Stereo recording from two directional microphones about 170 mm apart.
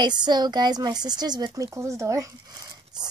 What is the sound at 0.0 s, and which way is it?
Speech, 25° right (ahead or behind).